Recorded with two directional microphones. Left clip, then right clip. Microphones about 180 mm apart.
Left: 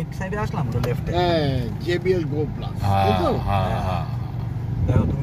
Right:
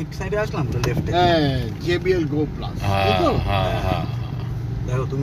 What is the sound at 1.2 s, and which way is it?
Speech, 35° left (ahead or behind).